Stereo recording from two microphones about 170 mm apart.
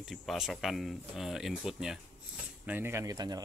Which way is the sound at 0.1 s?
Centre (ahead or behind).